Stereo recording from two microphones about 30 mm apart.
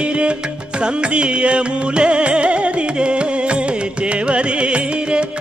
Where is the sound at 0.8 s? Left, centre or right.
Right.